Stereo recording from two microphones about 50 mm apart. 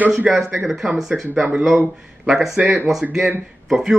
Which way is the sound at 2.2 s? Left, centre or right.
Centre.